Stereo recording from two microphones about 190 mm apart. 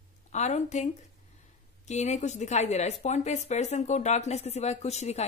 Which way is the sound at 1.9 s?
35° left (ahead or behind).